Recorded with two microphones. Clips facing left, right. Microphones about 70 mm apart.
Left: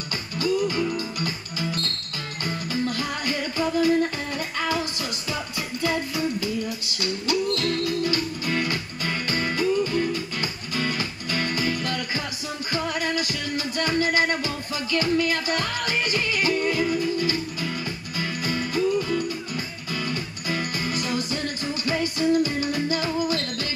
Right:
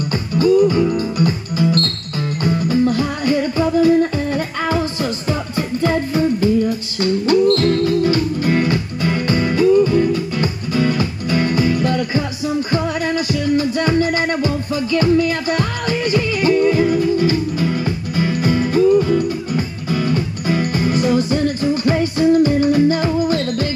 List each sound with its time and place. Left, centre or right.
0.4 s music: right
7.5 s music: right
9.8 s music: right
16.9 s music: right